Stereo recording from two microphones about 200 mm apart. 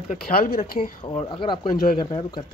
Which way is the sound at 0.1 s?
50° left (ahead or behind).